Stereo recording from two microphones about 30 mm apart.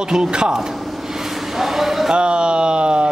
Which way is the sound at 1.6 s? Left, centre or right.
Centre.